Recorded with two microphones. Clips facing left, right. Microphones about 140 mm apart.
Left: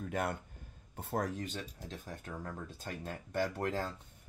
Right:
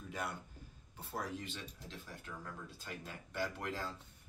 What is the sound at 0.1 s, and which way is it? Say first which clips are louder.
Speech: left 6 dB; 55° left (ahead or behind).